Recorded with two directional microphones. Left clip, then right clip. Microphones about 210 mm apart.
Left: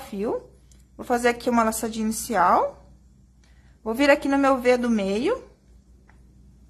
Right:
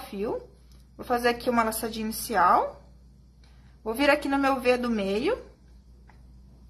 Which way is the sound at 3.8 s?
20° left (ahead or behind).